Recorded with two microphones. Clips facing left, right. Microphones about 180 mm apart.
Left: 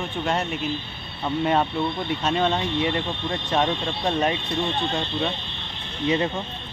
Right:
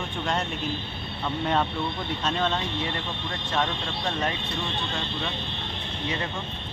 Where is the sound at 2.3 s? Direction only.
15° left (ahead or behind).